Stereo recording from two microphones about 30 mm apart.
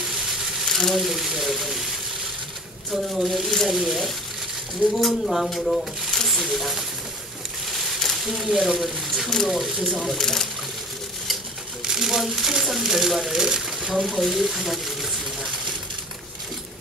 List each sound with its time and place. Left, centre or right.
0.0 s a sound: centre
0.7 s a sound: centre
1.0 s speech: centre
2.9 s speech: centre
3.6 s speech: centre
4.9 s speech: centre
5.7 s a sound: centre
6.4 s speech: centre
7.7 s a sound: centre
8.4 s speech: centre
10.1 s speech: centre
11.8 s speech: centre
13.3 s speech: centre
13.9 s speech: centre